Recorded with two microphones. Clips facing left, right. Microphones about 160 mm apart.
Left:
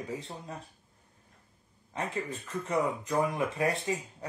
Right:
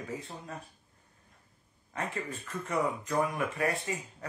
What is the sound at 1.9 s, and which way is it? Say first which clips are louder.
Speech: left 2 dB; 25° left (ahead or behind).